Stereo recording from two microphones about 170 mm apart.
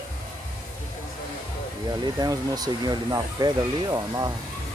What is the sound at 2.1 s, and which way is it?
Speech, 20° right (ahead or behind).